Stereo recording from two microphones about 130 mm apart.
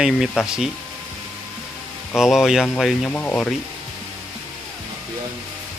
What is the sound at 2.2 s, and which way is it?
Speech, 5° right (ahead or behind).